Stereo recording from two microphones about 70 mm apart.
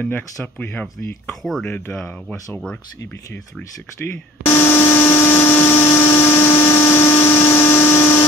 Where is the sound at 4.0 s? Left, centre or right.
Left.